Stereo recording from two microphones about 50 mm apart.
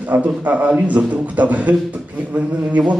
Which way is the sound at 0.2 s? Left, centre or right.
Right.